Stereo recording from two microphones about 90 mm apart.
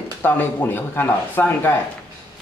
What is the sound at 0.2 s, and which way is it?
Speech, 20° left (ahead or behind).